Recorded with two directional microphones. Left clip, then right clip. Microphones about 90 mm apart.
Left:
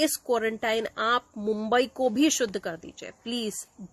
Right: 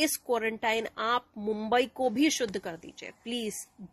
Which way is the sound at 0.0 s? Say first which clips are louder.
Left 3 dB; 45° left (ahead or behind).